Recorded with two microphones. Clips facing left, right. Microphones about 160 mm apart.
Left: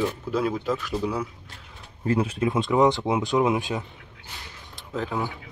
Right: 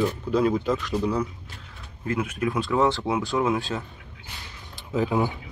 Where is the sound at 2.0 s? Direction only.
30° left (ahead or behind).